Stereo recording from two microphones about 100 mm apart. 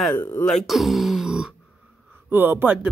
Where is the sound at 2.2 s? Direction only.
20° right (ahead or behind).